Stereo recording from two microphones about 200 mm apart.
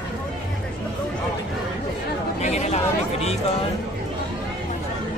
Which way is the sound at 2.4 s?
35° left (ahead or behind).